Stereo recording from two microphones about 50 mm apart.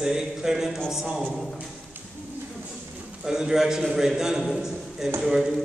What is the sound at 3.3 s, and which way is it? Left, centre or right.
A man's voice, centre.